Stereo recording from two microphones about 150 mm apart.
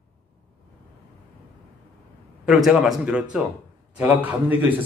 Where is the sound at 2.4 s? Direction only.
5° right (ahead or behind).